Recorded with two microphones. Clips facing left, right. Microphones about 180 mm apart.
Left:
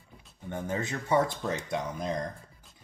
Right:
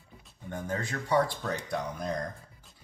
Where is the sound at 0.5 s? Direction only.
20° left (ahead or behind).